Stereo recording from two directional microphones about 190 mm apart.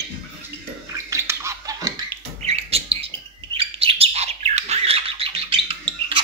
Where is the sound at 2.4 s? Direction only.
35° right (ahead or behind).